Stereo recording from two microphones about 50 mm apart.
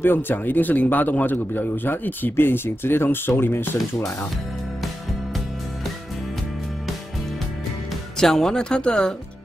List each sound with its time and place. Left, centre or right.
0.0 s a man's voice: left
8.2 s speech: centre